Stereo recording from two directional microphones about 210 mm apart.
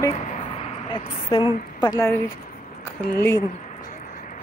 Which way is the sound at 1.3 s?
20° left (ahead or behind).